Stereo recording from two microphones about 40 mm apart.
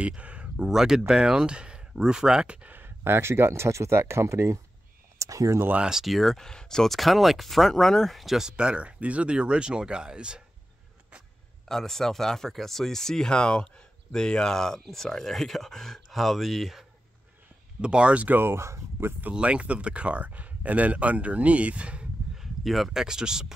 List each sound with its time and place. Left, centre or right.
0.0 s a sound: right
0.6 s speech: centre
2.4 s speech: right
2.7 s speech: right
6.0 s speech: centre
8.5 s speech: right
11.6 s speech: centre
17.8 s speech: right
18.3 s speech: right
19.3 s speech: right
22.3 s a sound: centre
23.0 s speech: centre